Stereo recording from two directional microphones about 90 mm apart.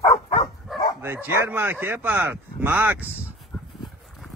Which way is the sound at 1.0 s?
25° right (ahead or behind).